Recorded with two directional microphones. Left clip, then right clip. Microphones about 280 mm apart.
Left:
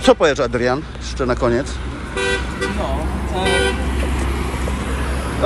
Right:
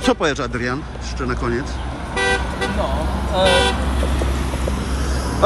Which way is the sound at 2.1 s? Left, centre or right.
Right.